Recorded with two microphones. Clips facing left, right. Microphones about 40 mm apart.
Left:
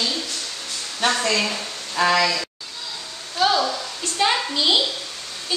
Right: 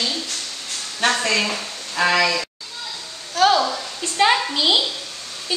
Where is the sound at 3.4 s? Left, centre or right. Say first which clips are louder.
Right 3 dB; centre.